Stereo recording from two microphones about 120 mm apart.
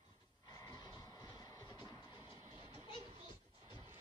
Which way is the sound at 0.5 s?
35° left (ahead or behind).